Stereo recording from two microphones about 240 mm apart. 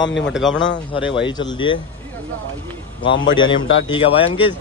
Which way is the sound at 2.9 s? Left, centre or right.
Centre.